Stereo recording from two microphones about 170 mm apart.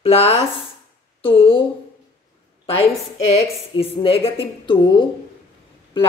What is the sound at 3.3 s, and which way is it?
A woman's voice, 35° left (ahead or behind).